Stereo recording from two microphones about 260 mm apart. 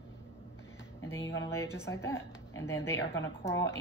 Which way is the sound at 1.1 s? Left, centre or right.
Left.